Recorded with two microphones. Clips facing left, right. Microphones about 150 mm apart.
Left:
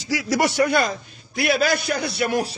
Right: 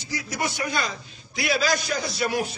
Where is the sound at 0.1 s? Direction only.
85° left; by 2.3 s 60° left (ahead or behind).